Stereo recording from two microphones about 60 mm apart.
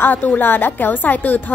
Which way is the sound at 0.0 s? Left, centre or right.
Left.